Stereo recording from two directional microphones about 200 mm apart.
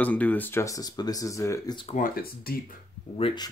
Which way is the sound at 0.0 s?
5° left (ahead or behind).